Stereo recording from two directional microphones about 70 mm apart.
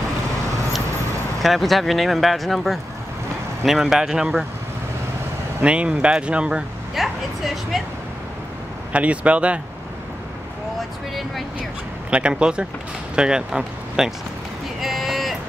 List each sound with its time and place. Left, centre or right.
1.4 s speech: centre
5.6 s speech: centre
7.0 s speech: centre
8.9 s speech: centre
12.1 s speech: centre
14.8 s vehicle: centre